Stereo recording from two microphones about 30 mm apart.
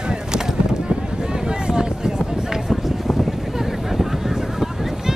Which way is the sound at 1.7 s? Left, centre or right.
Right.